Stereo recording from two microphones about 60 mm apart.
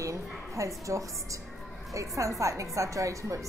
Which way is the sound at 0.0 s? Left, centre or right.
Right.